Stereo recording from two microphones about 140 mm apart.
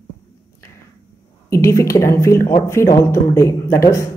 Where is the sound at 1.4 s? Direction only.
20° left (ahead or behind).